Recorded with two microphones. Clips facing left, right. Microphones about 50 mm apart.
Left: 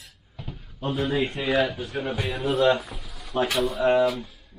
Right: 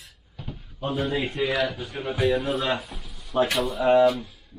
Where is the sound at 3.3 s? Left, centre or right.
Centre.